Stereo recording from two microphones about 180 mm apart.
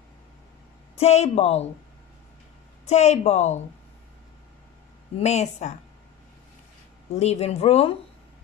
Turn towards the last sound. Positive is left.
turn(degrees=35)  # may be behind; listen again after turning